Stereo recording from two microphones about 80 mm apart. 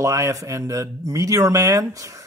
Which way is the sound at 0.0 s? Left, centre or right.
Right.